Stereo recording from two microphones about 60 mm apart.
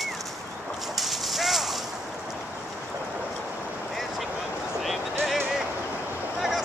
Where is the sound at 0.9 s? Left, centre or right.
Centre.